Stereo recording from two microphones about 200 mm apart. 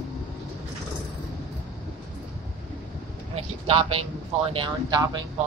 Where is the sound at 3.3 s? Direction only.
30° right (ahead or behind).